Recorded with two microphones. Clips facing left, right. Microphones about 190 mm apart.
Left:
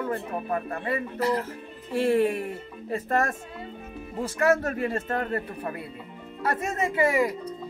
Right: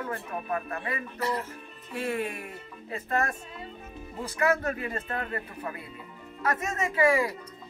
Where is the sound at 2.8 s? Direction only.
45° left (ahead or behind).